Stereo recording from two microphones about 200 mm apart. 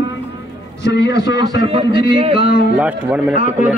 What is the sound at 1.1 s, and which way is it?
A man's voice, 20° right (ahead or behind).